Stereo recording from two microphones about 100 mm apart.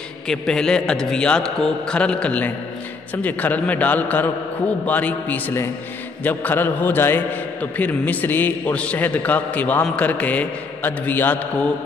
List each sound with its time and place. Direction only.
0.3 s a man's voice: 5° left (ahead or behind)